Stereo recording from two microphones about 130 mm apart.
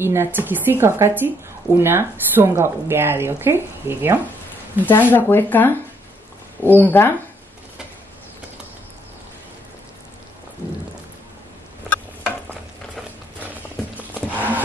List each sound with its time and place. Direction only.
0.0 s speech: 20° right (ahead or behind)
4.8 s speech: 15° left (ahead or behind)
14.2 s horse: 15° left (ahead or behind)